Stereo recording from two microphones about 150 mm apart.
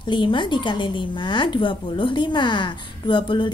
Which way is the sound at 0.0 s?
30° left (ahead or behind).